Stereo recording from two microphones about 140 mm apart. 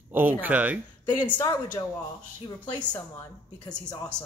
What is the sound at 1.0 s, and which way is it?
Speech, 35° left (ahead or behind).